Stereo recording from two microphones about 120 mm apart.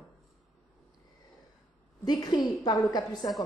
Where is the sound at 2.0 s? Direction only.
35° left (ahead or behind).